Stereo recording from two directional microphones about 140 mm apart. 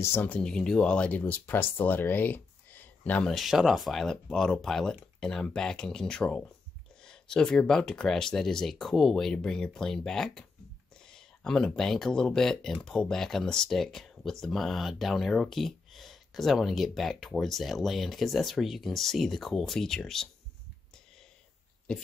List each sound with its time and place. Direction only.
0.0 s speech: 15° left (ahead or behind)
21.9 s speech: 5° left (ahead or behind)